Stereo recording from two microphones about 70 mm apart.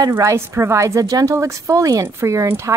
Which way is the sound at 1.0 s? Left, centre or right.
Right.